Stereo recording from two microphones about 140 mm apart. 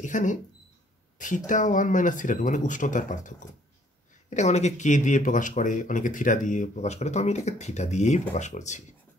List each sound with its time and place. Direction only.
0.0 s speech: 65° left (ahead or behind)
1.1 s a sound: 65° left (ahead or behind)
1.5 s speech: 65° left (ahead or behind)
4.3 s speech: 55° left (ahead or behind)